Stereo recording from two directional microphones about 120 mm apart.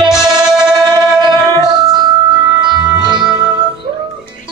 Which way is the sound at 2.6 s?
35° right (ahead or behind).